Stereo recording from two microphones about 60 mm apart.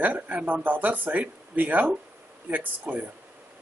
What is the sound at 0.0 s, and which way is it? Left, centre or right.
Speech, right.